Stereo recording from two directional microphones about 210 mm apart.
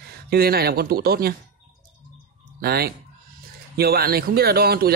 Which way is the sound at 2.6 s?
50° right (ahead or behind).